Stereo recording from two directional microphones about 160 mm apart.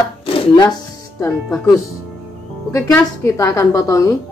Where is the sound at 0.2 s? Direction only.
30° left (ahead or behind).